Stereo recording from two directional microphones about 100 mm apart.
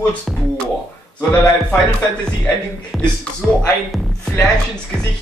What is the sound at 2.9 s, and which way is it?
Music, centre (ahead or behind).